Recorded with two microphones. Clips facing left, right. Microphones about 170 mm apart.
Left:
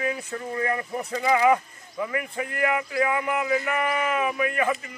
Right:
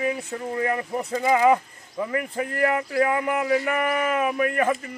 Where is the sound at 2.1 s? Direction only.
40° right (ahead or behind).